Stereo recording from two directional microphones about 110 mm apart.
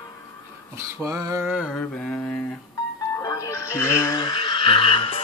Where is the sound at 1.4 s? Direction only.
15° right (ahead or behind).